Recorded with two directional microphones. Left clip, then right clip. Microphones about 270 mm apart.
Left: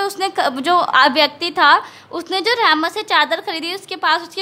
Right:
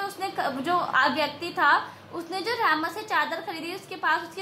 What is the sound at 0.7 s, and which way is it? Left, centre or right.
A woman's voice, left.